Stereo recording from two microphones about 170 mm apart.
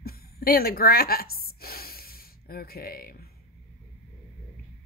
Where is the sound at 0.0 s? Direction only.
65° left (ahead or behind).